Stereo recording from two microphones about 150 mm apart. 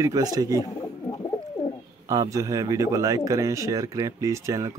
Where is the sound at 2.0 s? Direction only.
25° right (ahead or behind).